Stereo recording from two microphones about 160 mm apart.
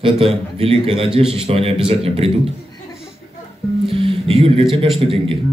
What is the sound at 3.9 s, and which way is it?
A man's voice, 35° right (ahead or behind).